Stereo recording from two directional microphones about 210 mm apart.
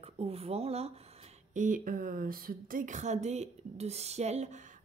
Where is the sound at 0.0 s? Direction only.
30° right (ahead or behind).